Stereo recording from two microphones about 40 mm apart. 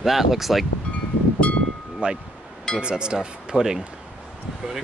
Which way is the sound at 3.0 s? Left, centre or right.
Right.